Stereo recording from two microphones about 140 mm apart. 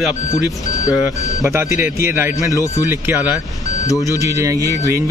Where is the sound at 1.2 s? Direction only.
25° left (ahead or behind).